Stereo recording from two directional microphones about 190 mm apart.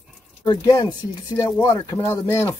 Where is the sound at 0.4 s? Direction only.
20° left (ahead or behind).